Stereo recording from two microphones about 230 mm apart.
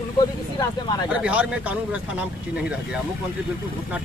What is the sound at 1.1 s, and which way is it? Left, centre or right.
Speech, centre.